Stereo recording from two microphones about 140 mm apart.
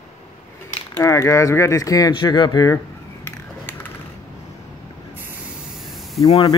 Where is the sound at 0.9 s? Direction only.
25° left (ahead or behind).